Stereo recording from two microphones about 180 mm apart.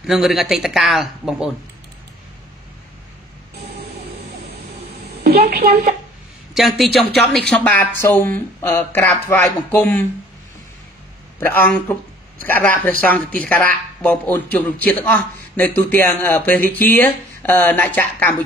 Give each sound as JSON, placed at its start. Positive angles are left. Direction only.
{"t": 0.0, "sound": "a man's voice", "side_deg": 0}
{"t": 5.2, "sound": "a sound", "side_deg": -60}
{"t": 6.5, "sound": "a man's voice", "side_deg": 0}
{"t": 11.3, "sound": "a man's voice", "side_deg": 10}